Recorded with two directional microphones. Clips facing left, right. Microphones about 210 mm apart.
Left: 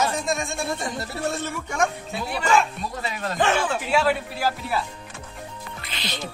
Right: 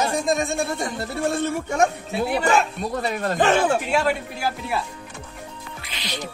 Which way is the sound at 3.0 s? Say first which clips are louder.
Right 3 dB; 50° right (ahead or behind).